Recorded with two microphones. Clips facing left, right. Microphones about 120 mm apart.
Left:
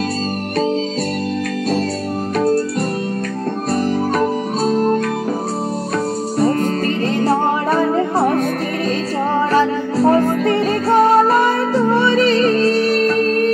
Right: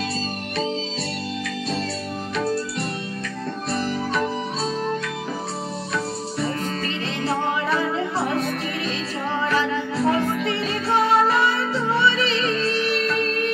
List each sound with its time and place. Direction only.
2.3 s music: 45° left (ahead or behind)
4.2 s music: 50° left (ahead or behind)
7.2 s music: 45° left (ahead or behind)
9.5 s music: 40° left (ahead or behind)